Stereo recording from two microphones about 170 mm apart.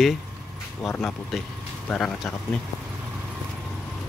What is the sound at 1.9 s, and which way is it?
Speech, 10° left (ahead or behind).